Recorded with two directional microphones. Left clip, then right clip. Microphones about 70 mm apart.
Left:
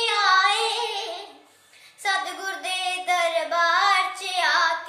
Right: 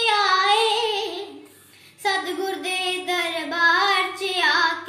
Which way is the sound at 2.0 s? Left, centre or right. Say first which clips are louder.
Right 2 dB; left.